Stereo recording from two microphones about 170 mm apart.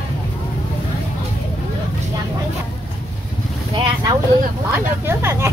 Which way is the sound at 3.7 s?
25° right (ahead or behind).